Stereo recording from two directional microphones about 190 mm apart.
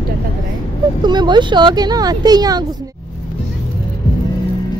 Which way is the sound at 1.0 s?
25° right (ahead or behind).